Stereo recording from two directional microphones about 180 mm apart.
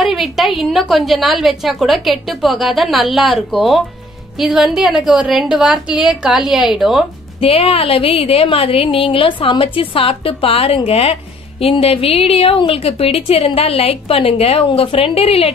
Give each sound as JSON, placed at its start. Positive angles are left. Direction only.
{"t": 0.0, "sound": "a sound", "side_deg": 0}
{"t": 0.6, "sound": "a woman's voice", "side_deg": 0}
{"t": 7.3, "sound": "a woman's voice", "side_deg": 30}